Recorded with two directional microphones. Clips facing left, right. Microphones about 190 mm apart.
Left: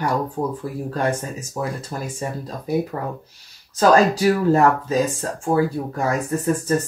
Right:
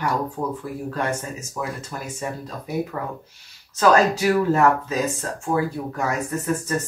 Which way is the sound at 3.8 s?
35° left (ahead or behind).